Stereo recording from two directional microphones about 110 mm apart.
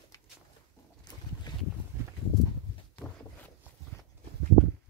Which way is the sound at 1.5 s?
40° left (ahead or behind).